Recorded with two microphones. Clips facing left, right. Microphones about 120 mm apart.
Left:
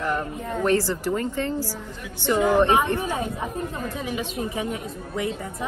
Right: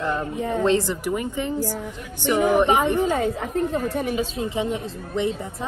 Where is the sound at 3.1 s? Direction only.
90° right; by 4.1 s 65° right (ahead or behind).